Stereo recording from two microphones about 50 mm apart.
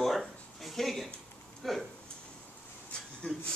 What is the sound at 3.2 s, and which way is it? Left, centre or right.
Speech, left.